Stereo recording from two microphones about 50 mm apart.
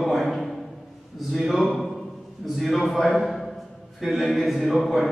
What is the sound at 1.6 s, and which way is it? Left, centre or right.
Speech, centre.